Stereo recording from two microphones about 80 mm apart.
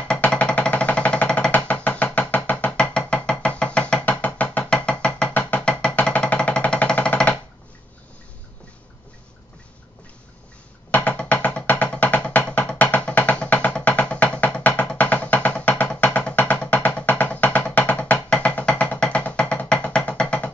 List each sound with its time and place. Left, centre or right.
0.1 s music: centre
10.9 s music: centre